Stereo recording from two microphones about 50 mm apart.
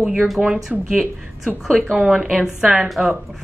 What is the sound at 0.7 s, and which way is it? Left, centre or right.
Speech, centre.